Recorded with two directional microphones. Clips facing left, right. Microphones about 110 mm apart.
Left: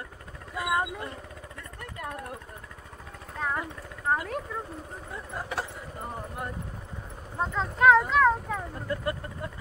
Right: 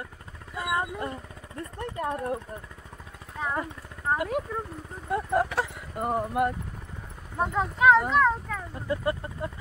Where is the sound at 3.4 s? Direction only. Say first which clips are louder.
Right 1 dB; 5° right (ahead or behind).